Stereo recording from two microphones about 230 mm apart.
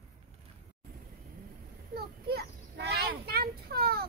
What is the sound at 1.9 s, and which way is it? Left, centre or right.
Children playing, right.